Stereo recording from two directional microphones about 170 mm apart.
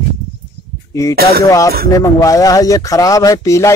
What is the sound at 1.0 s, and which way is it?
Speech, 20° left (ahead or behind).